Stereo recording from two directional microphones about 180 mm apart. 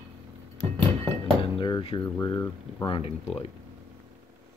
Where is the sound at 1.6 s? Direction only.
25° left (ahead or behind).